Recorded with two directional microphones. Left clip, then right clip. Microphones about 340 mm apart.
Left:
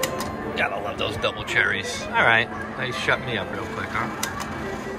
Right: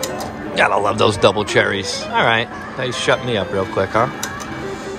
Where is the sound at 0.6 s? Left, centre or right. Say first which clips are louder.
Right 12 dB; centre.